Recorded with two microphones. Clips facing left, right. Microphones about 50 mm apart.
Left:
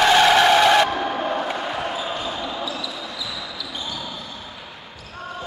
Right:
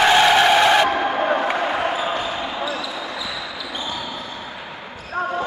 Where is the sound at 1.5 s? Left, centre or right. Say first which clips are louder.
Right 5 dB; right.